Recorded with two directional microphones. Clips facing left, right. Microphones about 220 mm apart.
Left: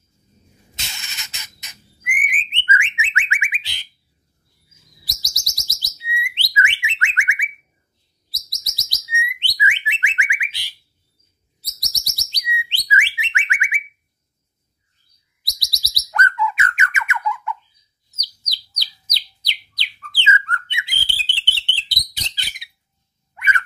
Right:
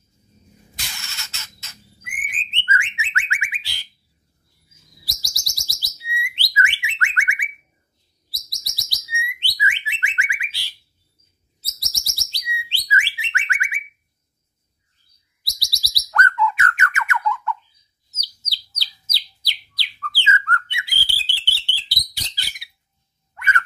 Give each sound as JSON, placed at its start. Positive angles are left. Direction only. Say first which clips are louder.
{"t": 0.7, "sound": "bird", "louder": "even", "side_deg": 20}
{"t": 5.0, "sound": "bird", "louder": "left 1 dB", "side_deg": 20}
{"t": 7.2, "sound": "a sound", "louder": "left 1 dB", "side_deg": 20}
{"t": 8.5, "sound": "bird", "louder": "left 1 dB", "side_deg": 20}
{"t": 15.4, "sound": "bird", "louder": "even", "side_deg": 20}
{"t": 23.3, "sound": "dog", "louder": "even", "side_deg": 15}